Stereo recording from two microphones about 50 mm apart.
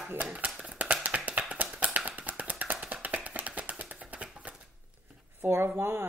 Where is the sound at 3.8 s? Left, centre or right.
Right.